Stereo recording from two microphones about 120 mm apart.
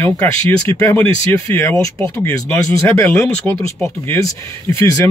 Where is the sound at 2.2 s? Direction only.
20° left (ahead or behind).